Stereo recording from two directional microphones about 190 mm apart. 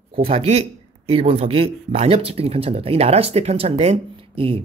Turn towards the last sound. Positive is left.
turn(degrees=-30)  # may be behind; listen again after turning